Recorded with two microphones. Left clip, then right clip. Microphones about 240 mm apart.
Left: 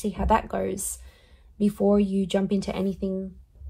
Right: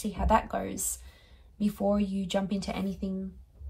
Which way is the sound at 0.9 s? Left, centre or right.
Left.